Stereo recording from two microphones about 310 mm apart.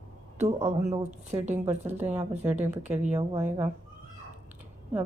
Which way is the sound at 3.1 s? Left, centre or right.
Centre.